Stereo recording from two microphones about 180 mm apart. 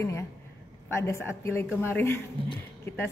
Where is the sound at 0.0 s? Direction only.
15° left (ahead or behind).